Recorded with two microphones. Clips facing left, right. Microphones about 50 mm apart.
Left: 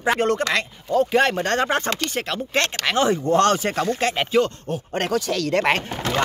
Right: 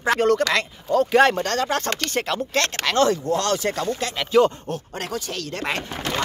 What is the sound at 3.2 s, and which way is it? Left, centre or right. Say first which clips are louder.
Speech: left 4 dB; left.